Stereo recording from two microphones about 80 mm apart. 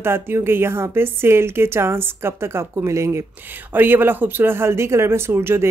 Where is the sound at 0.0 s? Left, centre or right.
Right.